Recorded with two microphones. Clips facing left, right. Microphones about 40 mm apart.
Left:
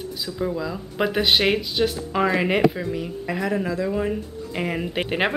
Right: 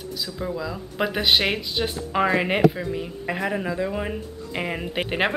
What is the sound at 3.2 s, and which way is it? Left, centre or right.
A woman's voice, centre.